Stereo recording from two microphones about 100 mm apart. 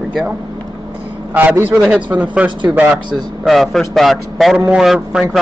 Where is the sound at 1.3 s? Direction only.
15° right (ahead or behind).